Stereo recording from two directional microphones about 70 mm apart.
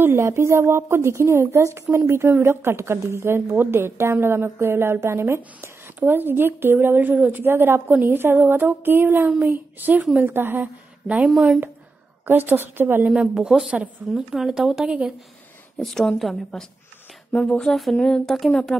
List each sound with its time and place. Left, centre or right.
0.0 s a woman's voice: right
11.2 s a woman's voice: centre
12.3 s a woman's voice: right
13.1 s a woman's voice: centre
15.8 s a woman's voice: centre
17.3 s speech: centre